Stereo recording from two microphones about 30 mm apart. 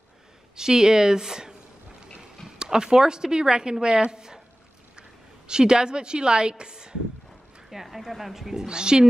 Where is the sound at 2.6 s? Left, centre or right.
Right.